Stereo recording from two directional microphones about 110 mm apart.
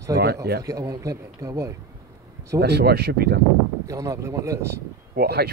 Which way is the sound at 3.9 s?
30° right (ahead or behind).